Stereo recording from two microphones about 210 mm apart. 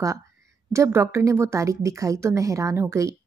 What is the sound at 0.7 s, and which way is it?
A woman's voice, 10° right (ahead or behind).